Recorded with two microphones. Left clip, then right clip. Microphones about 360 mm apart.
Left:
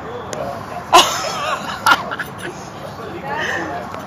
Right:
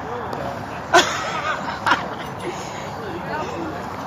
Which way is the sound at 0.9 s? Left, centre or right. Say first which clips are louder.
Left 4 dB; left.